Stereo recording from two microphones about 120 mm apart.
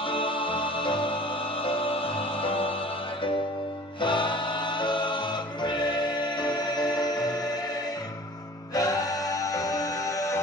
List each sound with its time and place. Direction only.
0.0 s music: 45° left (ahead or behind)
4.0 s music: 40° left (ahead or behind)
8.7 s music: 30° left (ahead or behind)